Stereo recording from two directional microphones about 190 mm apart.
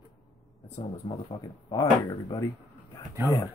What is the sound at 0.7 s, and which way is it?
Speech, 30° left (ahead or behind).